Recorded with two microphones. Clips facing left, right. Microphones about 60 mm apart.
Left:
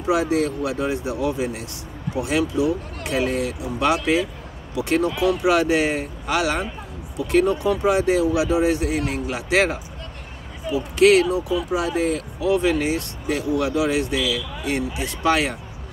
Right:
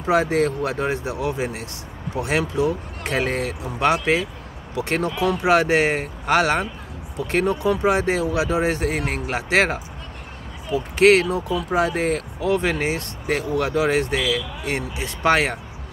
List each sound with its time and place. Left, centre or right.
0.0 s speech: right